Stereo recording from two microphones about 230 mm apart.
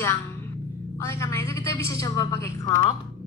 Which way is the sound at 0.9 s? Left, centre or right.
Centre.